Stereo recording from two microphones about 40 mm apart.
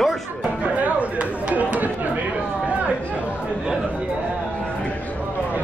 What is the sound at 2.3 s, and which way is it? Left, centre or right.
Chatter, right.